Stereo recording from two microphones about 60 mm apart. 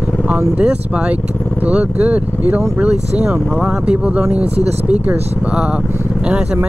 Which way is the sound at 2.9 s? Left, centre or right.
Centre.